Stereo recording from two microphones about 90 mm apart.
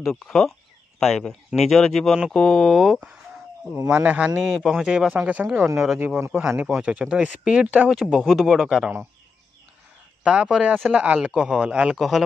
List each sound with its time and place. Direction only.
0.0 s speech: 5° left (ahead or behind)
3.9 s speech: 15° right (ahead or behind)
4.4 s speech: centre (ahead or behind)
5.1 s speech: 20° right (ahead or behind)
7.9 s speech: centre (ahead or behind)
10.2 s speech: 10° right (ahead or behind)